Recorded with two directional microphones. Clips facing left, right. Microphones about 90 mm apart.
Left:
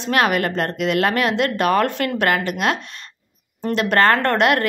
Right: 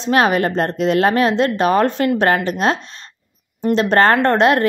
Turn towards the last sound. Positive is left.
turn(degrees=-25)  # may be behind; listen again after turning